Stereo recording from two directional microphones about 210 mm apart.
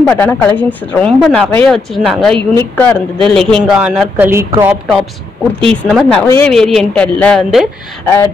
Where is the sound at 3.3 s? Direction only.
Centre (ahead or behind).